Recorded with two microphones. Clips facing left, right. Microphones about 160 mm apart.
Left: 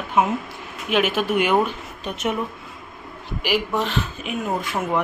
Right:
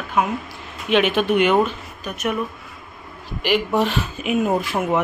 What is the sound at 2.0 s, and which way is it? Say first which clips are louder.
Speech: even; 25° left (ahead or behind).